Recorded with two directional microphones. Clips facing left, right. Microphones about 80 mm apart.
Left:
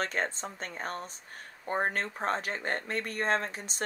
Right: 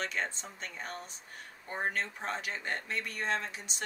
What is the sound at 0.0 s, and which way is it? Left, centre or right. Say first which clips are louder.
Speech: left 4 dB; left.